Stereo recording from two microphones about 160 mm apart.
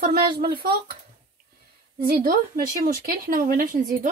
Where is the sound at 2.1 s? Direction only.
70° right (ahead or behind).